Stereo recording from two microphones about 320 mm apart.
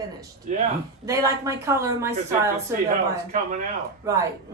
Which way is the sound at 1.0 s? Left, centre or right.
Centre.